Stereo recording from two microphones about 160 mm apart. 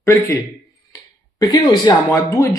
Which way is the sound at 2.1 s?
15° left (ahead or behind).